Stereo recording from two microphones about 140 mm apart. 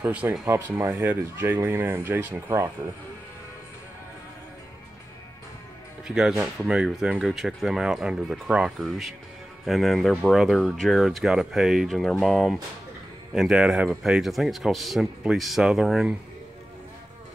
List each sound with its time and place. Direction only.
0.0 s speech: 10° right (ahead or behind)
6.0 s speech: 5° right (ahead or behind)